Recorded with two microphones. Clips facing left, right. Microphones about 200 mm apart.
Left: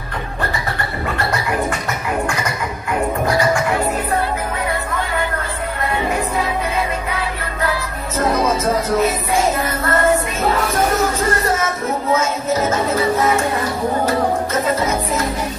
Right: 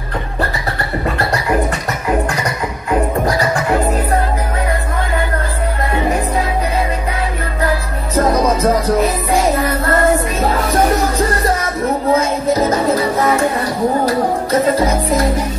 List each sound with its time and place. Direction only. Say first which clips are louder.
8.5 s music: right 3 dB; 35° right (ahead or behind)
10.4 s music: right 3 dB; 35° right (ahead or behind)